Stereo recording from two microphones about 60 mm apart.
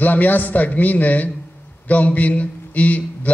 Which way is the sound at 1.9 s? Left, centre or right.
Left.